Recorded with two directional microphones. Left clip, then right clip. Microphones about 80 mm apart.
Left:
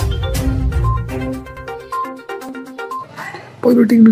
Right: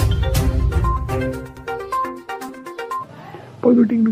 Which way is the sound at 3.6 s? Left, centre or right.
Centre.